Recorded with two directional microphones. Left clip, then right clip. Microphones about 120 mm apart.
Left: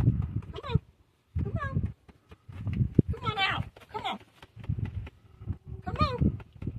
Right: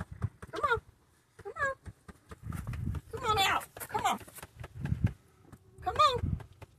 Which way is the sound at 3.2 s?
Centre (ahead or behind).